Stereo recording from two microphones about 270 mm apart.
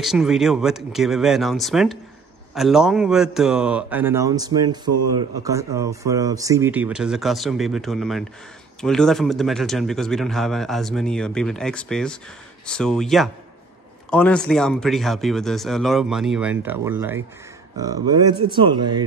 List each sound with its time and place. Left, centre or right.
0.0 s a man's voice: centre